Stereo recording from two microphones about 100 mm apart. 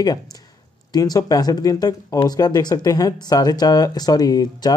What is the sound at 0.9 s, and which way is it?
Speech, 40° left (ahead or behind).